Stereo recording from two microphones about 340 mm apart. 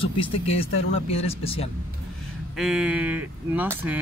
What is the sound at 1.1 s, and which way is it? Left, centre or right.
Speech, centre.